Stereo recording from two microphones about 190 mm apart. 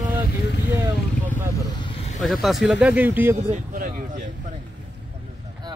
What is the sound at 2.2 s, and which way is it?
Speech, centre (ahead or behind).